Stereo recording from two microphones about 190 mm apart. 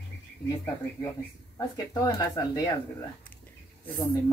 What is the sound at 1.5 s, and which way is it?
Speech, 20° left (ahead or behind).